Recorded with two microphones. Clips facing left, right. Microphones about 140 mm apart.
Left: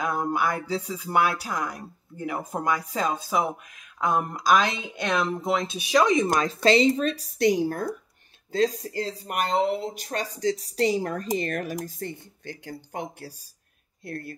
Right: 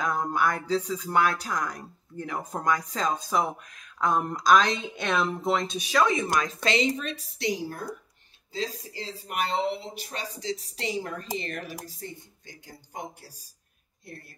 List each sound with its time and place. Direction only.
0.0 s music: 5° left (ahead or behind); by 7.9 s 50° left (ahead or behind)
8.5 s speech: 55° left (ahead or behind)